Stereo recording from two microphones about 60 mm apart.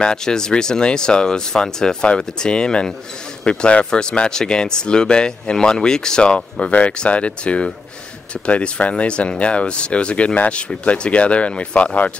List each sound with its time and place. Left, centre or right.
0.0 s speech: centre